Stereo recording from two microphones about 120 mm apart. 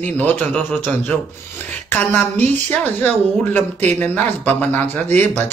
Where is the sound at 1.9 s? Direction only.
20° left (ahead or behind).